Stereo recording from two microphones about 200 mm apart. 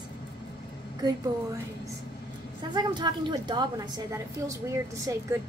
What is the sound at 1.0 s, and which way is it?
Speech, 20° right (ahead or behind).